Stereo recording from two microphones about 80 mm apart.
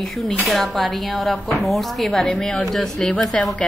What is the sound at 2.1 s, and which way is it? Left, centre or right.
A woman's voice, centre.